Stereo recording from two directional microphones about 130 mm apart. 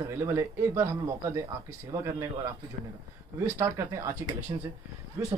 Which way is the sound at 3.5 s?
20° right (ahead or behind).